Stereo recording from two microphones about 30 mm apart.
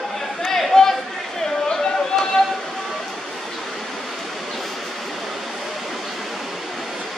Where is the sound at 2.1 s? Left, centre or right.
Centre.